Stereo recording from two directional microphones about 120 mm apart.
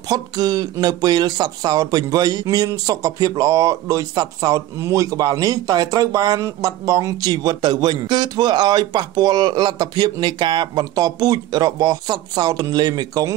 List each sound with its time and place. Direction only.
0.1 s speech: 35° right (ahead or behind)